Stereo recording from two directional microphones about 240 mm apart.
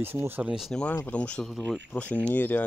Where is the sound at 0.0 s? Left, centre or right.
Centre.